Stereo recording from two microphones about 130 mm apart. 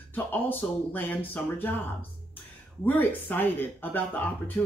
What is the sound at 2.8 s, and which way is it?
A woman's voice, 15° left (ahead or behind).